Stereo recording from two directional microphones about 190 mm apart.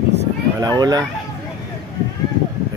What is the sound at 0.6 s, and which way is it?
Speech, 20° right (ahead or behind).